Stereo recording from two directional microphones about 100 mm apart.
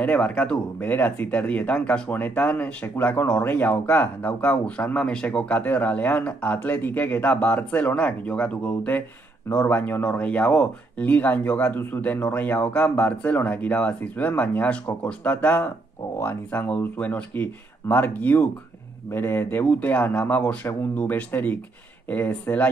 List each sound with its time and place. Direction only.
0.0 s speech: 15° left (ahead or behind)
16.6 s speech: 15° left (ahead or behind)